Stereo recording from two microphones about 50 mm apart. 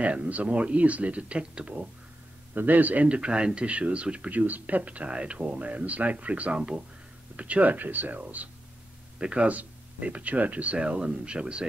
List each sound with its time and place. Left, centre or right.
0.0 s a man's voice: right
2.5 s a man's voice: right
9.2 s a man's voice: right